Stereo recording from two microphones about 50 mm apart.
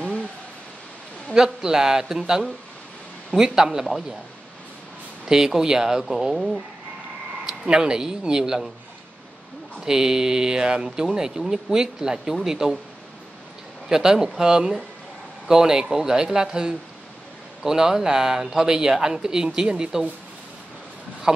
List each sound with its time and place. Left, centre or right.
1.3 s speech: centre
5.2 s speech: centre
9.8 s speech: centre
13.8 s speech: centre